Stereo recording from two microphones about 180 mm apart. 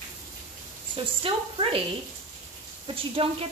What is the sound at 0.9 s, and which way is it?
Speech, 30° right (ahead or behind).